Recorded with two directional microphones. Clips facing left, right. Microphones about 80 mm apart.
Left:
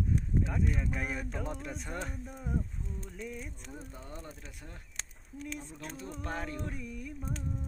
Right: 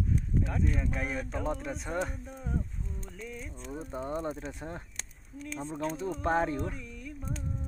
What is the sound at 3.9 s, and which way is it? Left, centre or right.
Speech, right.